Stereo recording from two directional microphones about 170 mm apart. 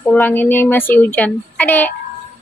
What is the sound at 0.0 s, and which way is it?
Speech, 10° left (ahead or behind).